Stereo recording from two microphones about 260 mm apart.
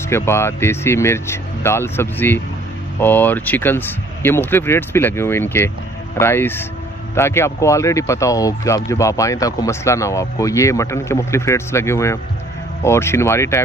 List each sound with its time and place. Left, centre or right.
0.1 s speech: centre